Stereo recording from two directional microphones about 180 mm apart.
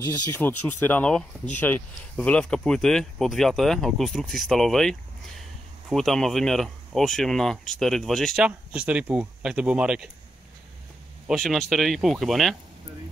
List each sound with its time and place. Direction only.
0.0 s speech: 20° left (ahead or behind); by 10.0 s 5° right (ahead or behind)
11.2 s speech: centre (ahead or behind)